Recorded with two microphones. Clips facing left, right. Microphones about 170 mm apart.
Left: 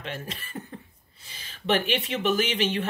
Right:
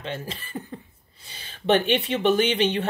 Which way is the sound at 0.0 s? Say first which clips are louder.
Right 3 dB; 30° right (ahead or behind).